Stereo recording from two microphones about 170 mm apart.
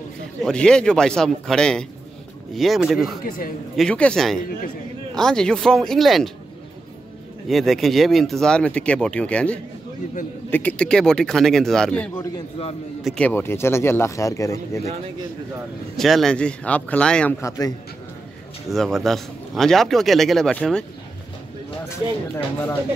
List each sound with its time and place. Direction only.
0.4 s a man's voice: 5° left (ahead or behind)
3.3 s a man's voice: 55° left (ahead or behind)
3.7 s a man's voice: 5° left (ahead or behind)
7.4 s a man's voice: centre (ahead or behind); by 14.8 s 20° left (ahead or behind)
16.0 s a man's voice: centre (ahead or behind)
17.4 s a man's voice: 20° left (ahead or behind)
18.7 s a man's voice: centre (ahead or behind)
21.8 s speech: 15° left (ahead or behind)